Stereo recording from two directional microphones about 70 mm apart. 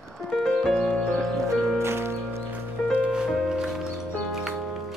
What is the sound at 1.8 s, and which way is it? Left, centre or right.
Music, right.